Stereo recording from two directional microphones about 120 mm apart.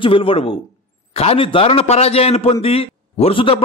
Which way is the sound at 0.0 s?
50° left (ahead or behind).